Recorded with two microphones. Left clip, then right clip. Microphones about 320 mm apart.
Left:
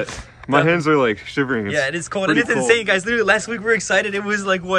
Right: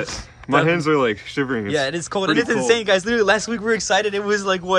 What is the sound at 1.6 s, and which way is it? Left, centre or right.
A man's voice, centre.